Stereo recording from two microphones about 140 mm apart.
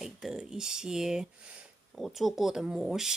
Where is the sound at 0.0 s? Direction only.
5° right (ahead or behind).